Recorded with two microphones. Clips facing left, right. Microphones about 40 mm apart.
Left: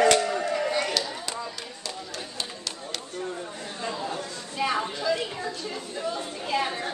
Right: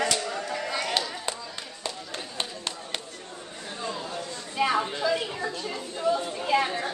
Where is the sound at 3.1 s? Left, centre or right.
Left.